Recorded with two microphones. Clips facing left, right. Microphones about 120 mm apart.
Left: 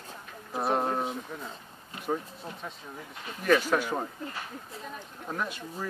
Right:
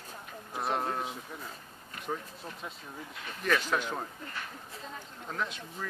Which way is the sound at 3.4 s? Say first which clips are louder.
Left 5 dB; 10° left (ahead or behind).